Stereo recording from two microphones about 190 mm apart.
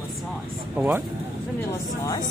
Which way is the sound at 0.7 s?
10° right (ahead or behind).